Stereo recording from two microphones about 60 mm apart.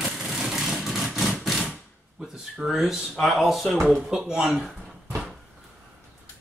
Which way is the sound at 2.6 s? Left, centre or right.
Centre.